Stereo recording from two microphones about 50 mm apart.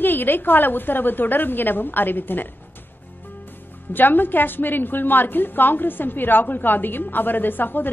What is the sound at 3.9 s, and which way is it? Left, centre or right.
A woman's voice, left.